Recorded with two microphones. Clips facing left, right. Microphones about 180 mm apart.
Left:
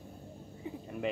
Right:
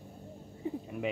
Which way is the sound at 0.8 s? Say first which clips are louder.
Left 2 dB; 5° right (ahead or behind).